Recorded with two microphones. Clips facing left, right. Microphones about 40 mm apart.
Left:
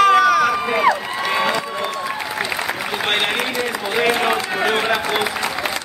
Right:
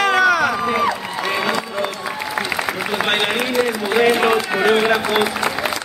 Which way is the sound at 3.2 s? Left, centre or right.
Centre.